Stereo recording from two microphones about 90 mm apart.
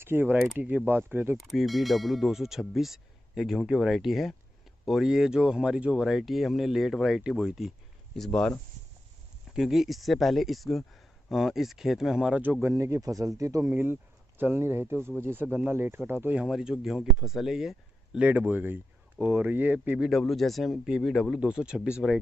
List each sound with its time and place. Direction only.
0.0 s speech: 25° right (ahead or behind)
1.3 s speech: centre (ahead or behind)
8.2 s speech: 10° left (ahead or behind)
9.5 s speech: 5° right (ahead or behind)
12.6 s speech: 35° right (ahead or behind)
16.3 s speech: 5° right (ahead or behind)
18.2 s speech: 20° right (ahead or behind)
20.1 s speech: centre (ahead or behind)
21.4 s speech: 10° right (ahead or behind)